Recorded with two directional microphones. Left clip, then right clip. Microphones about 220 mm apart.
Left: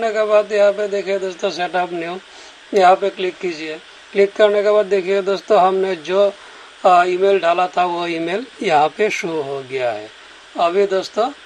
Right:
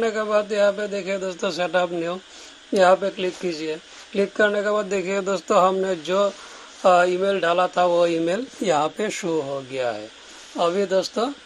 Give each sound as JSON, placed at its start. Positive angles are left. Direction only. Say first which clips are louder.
{"t": 0.0, "sound": "a man's voice", "louder": "left 6 dB", "side_deg": -30}
{"t": 8.6, "sound": "speech", "louder": "left 7 dB", "side_deg": -10}
{"t": 10.5, "sound": "speech", "louder": "left 5 dB", "side_deg": -30}